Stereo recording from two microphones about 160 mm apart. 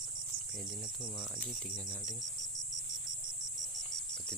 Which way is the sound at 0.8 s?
5° right (ahead or behind).